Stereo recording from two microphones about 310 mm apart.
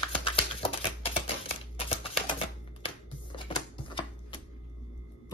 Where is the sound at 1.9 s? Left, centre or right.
Centre.